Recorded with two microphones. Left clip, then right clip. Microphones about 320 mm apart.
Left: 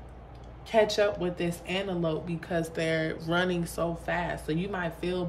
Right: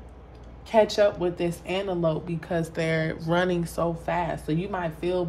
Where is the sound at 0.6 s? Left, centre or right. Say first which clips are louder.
Right 4 dB; centre.